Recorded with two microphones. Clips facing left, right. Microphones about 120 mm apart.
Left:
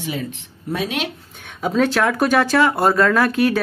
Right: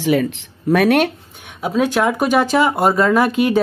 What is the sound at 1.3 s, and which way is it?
Speech, 10° right (ahead or behind).